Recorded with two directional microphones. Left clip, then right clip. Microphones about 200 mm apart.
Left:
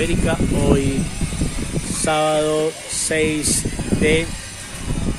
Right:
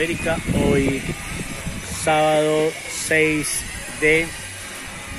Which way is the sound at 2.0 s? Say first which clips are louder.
Right 1 dB; 5° left (ahead or behind).